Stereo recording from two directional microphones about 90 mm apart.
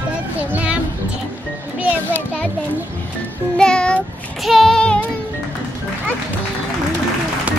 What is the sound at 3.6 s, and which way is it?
Child singing, 10° left (ahead or behind).